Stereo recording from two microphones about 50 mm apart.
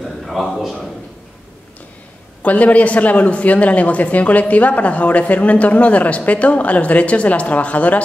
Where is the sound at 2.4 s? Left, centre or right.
Left.